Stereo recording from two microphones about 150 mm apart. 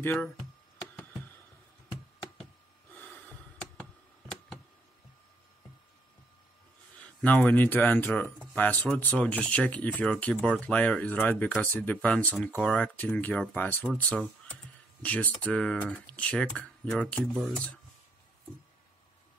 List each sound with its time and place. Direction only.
0.0 s speech: 15° left (ahead or behind)
7.0 s speech: 10° left (ahead or behind)